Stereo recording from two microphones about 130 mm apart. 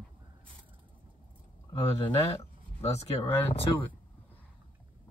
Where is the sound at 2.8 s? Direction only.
55° left (ahead or behind).